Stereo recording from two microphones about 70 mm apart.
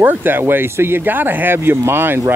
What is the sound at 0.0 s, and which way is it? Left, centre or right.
Speech, right.